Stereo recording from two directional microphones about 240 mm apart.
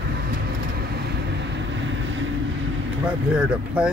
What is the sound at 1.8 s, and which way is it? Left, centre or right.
Vehicle, right.